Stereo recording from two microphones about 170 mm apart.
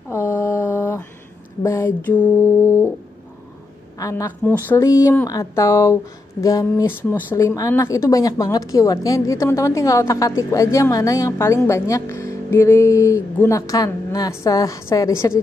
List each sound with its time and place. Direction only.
0.1 s mantra: 15° left (ahead or behind)
1.6 s speech: 20° left (ahead or behind)
4.0 s a woman's voice: 20° left (ahead or behind)